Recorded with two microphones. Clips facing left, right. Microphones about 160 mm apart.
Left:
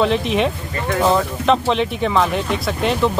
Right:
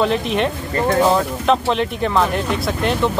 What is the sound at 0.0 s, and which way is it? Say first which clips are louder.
Speech: left 1 dB; centre (ahead or behind).